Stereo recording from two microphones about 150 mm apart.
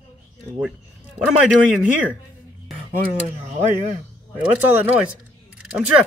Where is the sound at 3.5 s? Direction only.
50° right (ahead or behind).